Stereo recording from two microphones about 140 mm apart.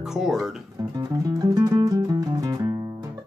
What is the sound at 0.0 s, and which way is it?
Speech, 5° right (ahead or behind).